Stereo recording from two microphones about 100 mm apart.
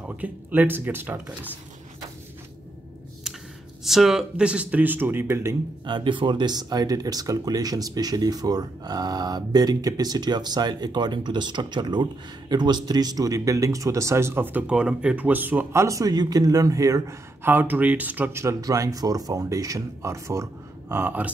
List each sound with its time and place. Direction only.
0.2 s speech: 15° right (ahead or behind)
3.8 s speech: 5° right (ahead or behind); by 5.6 s 25° right (ahead or behind)
5.9 s speech: 55° right (ahead or behind); by 14.6 s 20° right (ahead or behind)
14.7 s speech: 10° right (ahead or behind); by 17.0 s 35° right (ahead or behind)
17.4 s speech: 20° right (ahead or behind)